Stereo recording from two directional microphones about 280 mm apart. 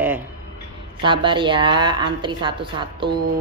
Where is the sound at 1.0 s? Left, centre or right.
Centre.